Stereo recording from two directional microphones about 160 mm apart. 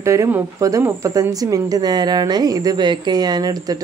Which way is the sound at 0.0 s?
20° right (ahead or behind).